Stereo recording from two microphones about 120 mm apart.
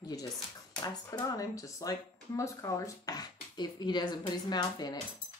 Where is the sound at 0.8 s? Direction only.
30° left (ahead or behind).